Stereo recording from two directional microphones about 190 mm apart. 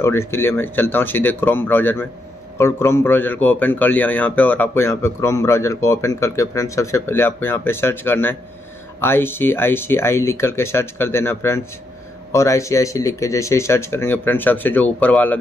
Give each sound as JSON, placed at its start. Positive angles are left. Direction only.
{"t": 0.0, "sound": "a man's voice", "side_deg": 15}